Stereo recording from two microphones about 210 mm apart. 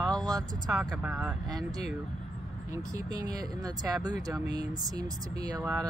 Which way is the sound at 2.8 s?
15° right (ahead or behind).